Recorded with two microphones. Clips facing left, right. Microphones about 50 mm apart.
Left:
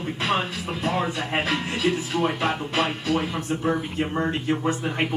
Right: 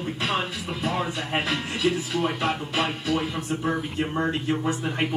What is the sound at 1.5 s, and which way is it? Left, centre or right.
Music, left.